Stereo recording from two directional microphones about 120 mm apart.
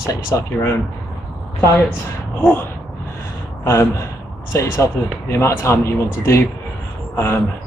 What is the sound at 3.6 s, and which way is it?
Speech, 25° left (ahead or behind).